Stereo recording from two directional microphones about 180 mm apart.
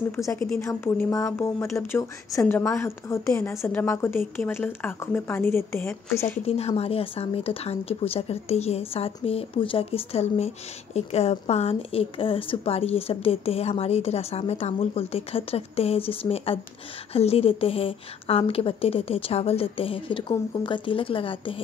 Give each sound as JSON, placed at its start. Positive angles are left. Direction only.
{"t": 0.1, "sound": "speech", "side_deg": 15}
{"t": 6.4, "sound": "a woman's voice", "side_deg": 35}